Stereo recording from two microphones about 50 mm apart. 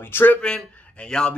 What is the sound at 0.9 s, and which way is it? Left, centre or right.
Speech, centre.